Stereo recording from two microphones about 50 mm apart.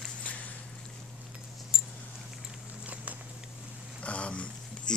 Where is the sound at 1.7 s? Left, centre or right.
Centre.